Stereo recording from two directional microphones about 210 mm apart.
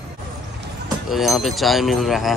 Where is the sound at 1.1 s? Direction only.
Centre (ahead or behind).